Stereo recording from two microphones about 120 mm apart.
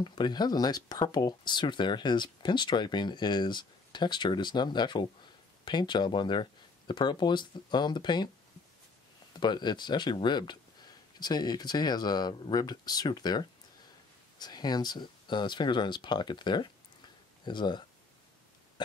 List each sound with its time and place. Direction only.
0.0 s speech: 40° left (ahead or behind)
9.3 s speech: 40° left (ahead or behind)